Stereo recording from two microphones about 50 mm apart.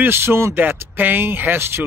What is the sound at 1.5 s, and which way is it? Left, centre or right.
Speech, right.